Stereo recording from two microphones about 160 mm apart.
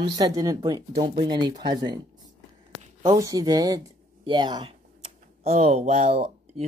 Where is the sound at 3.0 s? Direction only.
20° right (ahead or behind).